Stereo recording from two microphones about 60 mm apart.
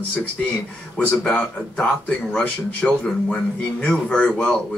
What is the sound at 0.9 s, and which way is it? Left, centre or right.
A man's voice, centre.